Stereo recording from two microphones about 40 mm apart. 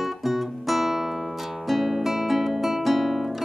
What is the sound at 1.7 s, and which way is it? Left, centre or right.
Guitar, centre.